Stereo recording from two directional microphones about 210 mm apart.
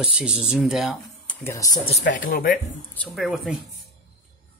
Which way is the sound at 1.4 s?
15° left (ahead or behind).